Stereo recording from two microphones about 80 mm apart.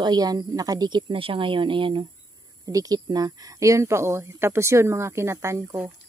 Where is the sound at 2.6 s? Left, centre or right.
Right.